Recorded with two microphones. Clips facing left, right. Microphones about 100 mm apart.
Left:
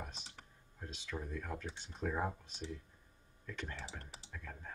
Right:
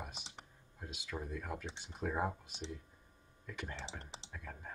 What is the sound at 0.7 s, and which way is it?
Speech, 10° right (ahead or behind).